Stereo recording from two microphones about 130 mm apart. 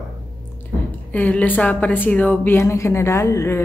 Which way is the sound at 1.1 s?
10° left (ahead or behind).